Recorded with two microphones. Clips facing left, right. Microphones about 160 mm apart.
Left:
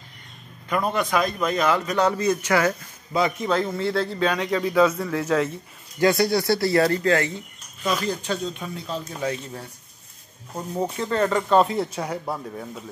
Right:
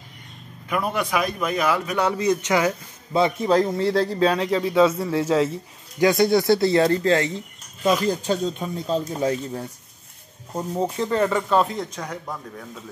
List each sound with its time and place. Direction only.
0.7 s a man's voice: 10° right (ahead or behind)
3.2 s a man's voice: 30° right (ahead or behind)
10.5 s a man's voice: 20° right (ahead or behind)
11.5 s speech: 5° left (ahead or behind)